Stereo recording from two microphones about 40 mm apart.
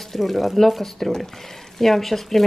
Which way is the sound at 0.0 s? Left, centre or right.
Centre.